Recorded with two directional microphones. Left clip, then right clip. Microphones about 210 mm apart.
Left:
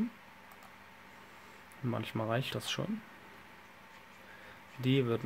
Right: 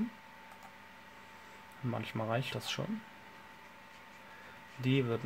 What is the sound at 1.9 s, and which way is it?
Speech, 20° left (ahead or behind).